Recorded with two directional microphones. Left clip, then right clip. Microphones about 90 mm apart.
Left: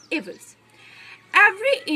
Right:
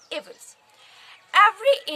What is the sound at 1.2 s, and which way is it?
Speech, 40° right (ahead or behind).